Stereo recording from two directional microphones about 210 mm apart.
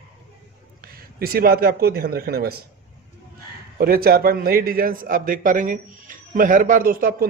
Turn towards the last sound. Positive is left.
turn(degrees=-40)  # may be behind; listen again after turning